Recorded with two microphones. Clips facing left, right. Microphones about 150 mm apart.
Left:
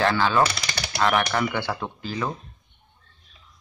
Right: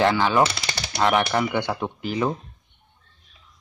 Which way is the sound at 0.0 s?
15° right (ahead or behind).